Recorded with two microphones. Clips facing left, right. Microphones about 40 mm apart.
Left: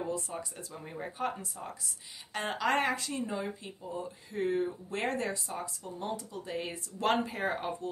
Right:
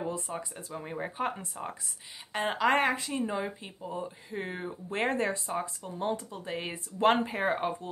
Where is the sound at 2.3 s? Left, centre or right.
Centre.